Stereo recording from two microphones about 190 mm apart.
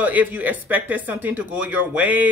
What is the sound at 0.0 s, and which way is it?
Speech, 10° right (ahead or behind).